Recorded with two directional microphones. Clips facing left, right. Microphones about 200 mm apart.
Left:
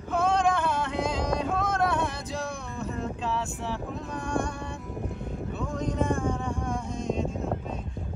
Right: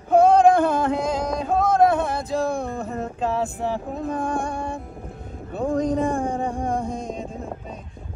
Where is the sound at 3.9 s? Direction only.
55° right (ahead or behind).